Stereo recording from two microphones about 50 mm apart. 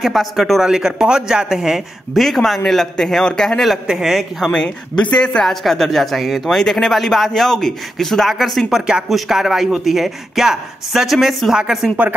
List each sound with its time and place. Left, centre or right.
0.0 s speech: centre
0.6 s speech: centre
2.1 s a man's voice: centre
3.8 s speech: centre
4.5 s speech: left
5.4 s speech: centre
6.5 s a man's voice: centre
8.6 s speech: centre